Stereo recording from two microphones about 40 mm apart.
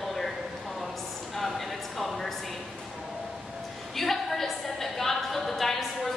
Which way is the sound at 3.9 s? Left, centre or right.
Centre.